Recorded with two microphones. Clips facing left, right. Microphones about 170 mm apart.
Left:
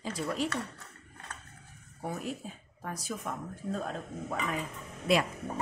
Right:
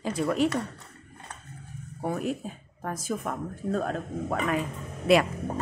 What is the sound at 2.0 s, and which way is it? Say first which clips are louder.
Speech: right 7 dB; 60° right (ahead or behind).